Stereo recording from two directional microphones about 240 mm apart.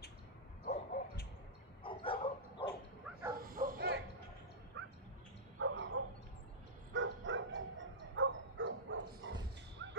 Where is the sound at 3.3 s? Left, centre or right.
Right.